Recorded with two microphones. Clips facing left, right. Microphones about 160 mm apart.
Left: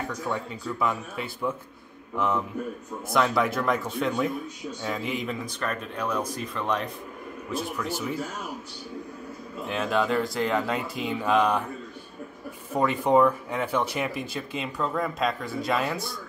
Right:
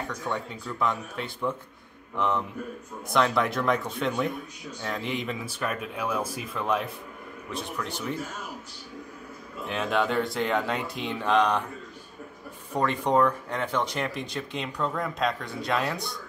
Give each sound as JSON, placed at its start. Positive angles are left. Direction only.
{"t": 0.3, "sound": "speech", "side_deg": 5}
{"t": 9.7, "sound": "speech", "side_deg": 0}
{"t": 12.7, "sound": "speech", "side_deg": 5}